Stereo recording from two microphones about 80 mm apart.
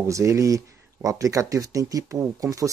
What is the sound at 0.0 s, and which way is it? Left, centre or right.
Speech, right.